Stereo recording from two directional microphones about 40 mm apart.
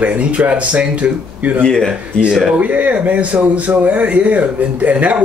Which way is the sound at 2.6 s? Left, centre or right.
Right.